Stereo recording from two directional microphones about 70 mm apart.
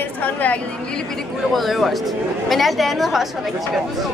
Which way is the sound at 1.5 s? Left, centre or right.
Centre.